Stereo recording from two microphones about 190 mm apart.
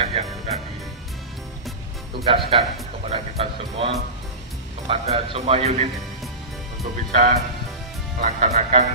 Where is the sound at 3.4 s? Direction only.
30° right (ahead or behind).